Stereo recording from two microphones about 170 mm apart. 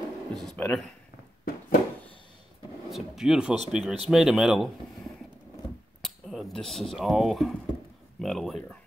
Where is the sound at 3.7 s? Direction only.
Centre (ahead or behind).